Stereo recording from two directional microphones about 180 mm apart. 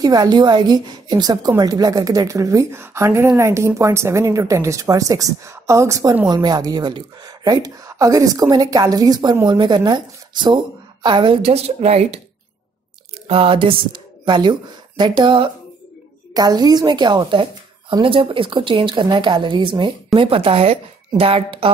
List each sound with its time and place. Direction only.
0.0 s a woman's voice: 20° right (ahead or behind)
13.3 s a woman's voice: 30° right (ahead or behind)